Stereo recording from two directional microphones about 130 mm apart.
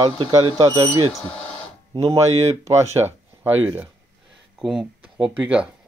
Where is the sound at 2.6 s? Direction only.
25° right (ahead or behind).